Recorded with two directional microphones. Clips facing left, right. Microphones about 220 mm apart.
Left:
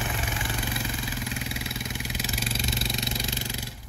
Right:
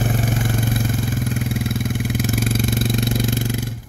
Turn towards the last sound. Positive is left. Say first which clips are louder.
# right 12 dB
turn(degrees=-50)  # may be behind; listen again after turning